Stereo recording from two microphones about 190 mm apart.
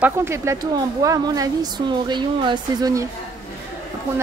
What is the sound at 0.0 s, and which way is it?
A woman's voice, 15° right (ahead or behind).